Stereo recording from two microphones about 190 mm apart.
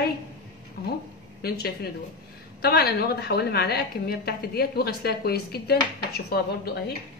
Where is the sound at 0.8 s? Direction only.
55° left (ahead or behind).